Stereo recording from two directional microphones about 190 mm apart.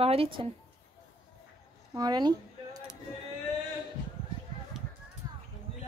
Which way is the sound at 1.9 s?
20° right (ahead or behind).